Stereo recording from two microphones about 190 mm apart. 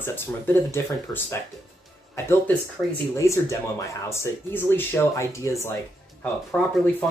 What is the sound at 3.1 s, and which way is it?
Speech, 15° left (ahead or behind).